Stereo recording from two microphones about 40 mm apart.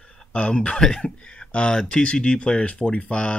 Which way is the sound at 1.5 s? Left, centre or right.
Left.